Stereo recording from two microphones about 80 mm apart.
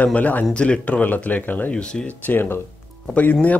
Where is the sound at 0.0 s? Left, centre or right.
Left.